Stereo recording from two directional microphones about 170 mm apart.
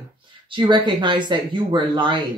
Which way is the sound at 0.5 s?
30° right (ahead or behind).